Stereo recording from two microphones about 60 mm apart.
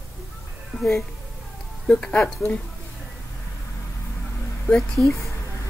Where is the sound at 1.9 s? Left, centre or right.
Centre.